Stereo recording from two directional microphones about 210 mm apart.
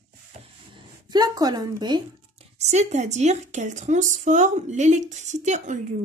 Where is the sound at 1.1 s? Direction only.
20° right (ahead or behind).